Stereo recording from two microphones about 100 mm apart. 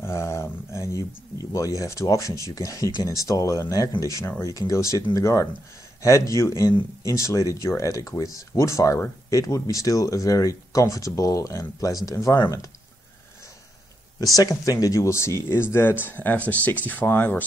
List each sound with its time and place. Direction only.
0.0 s speech: 25° left (ahead or behind)
14.2 s speech: 35° left (ahead or behind); by 17.4 s 20° left (ahead or behind)